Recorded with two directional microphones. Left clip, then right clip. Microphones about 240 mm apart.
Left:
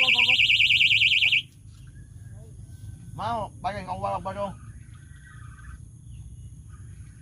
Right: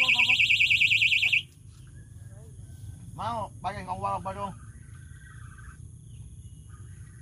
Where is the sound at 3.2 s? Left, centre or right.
Left.